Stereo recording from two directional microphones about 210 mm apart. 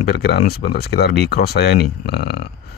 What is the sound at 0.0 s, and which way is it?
Speech, 50° left (ahead or behind).